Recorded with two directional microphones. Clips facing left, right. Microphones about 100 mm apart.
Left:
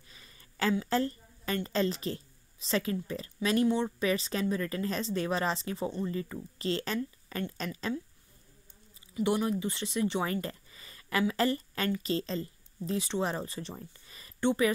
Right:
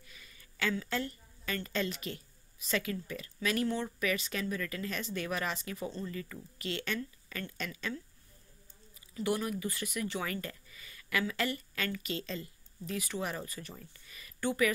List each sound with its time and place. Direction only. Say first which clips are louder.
0.1 s a sound: left 3 dB; 35° left (ahead or behind)
0.8 s a woman's voice: left 7 dB; 35° left (ahead or behind)
3.6 s speech: left 6 dB; 20° left (ahead or behind)
4.0 s a woman's voice: left 4 dB; 30° left (ahead or behind)
9.1 s speech: left 4 dB; 20° left (ahead or behind)